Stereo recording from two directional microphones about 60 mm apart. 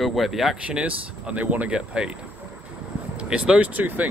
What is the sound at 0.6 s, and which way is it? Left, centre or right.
Speech, centre.